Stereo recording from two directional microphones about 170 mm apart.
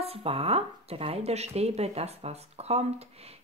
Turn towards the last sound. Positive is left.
turn(degrees=-40)  # may be behind; listen again after turning